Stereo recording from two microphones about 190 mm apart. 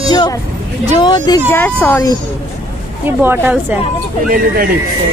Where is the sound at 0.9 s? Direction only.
25° left (ahead or behind).